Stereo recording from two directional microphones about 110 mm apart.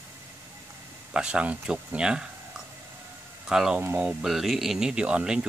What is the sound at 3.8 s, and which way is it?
Speech, 20° right (ahead or behind).